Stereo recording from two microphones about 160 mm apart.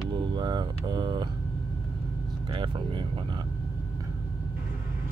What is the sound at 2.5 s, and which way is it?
Speech, 30° right (ahead or behind).